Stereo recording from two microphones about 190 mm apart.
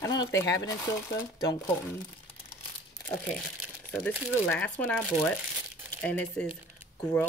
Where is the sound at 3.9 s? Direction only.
5° left (ahead or behind).